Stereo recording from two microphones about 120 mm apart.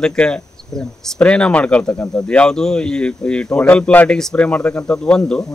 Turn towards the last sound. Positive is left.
turn(degrees=5)  # may be behind; listen again after turning